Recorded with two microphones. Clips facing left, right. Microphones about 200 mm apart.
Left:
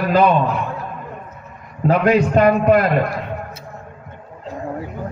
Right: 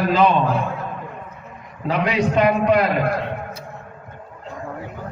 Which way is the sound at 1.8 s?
50° left (ahead or behind).